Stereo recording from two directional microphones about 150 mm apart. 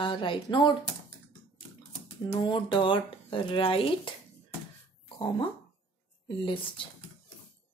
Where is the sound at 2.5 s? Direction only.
35° left (ahead or behind).